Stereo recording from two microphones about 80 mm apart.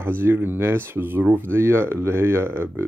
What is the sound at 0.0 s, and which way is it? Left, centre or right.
Speech, right.